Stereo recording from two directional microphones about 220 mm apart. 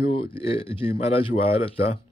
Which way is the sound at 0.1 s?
25° left (ahead or behind).